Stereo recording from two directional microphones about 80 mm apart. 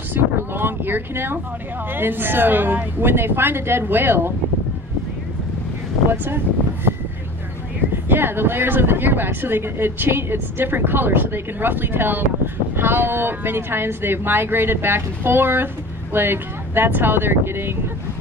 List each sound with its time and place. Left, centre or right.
0.1 s wind noise: right
1.9 s speech: right
6.2 s a sound: right
7.9 s speech: right